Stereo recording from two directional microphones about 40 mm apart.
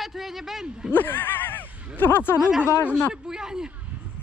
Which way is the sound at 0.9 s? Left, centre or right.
Left.